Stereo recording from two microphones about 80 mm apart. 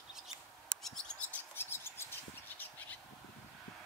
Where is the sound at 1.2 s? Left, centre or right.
Left.